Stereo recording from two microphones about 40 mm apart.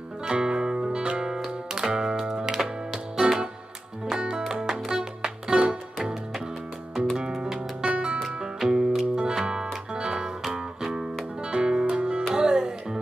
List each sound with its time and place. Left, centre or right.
0.3 s music: right
4.5 s music: centre
7.3 s music: centre
7.8 s music: right
8.4 s music: centre